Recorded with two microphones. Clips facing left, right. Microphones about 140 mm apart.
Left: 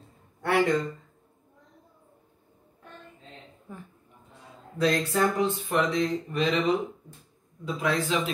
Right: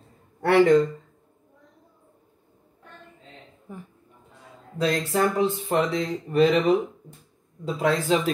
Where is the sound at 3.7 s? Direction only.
15° right (ahead or behind).